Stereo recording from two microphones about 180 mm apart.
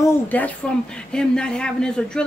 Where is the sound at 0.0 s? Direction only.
10° left (ahead or behind).